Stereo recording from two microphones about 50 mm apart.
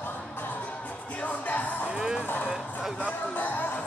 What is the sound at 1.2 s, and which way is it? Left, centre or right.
Music, left.